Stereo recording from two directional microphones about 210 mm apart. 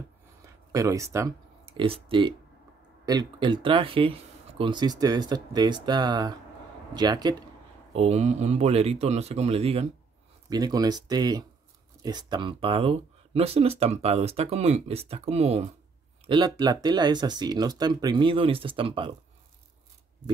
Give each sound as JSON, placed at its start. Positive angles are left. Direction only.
{"t": 0.7, "sound": "speech", "side_deg": -15}
{"t": 1.7, "sound": "speech", "side_deg": -25}
{"t": 7.9, "sound": "speech", "side_deg": -30}